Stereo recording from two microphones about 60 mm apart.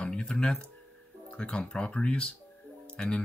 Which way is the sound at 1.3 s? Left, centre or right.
Centre.